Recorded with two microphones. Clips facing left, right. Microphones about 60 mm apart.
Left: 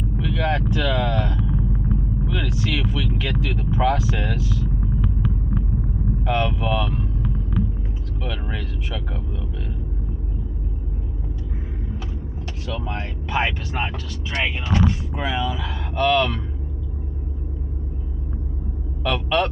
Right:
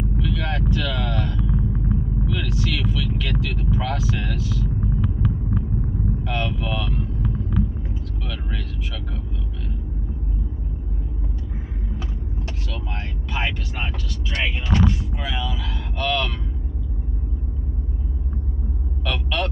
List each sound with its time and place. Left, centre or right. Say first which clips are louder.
0.2 s vehicle: left 5 dB; centre
6.2 s speech: left 9 dB; centre
8.2 s speech: left 7 dB; centre
12.6 s speech: left 8 dB; left
19.0 s speech: left 5 dB; centre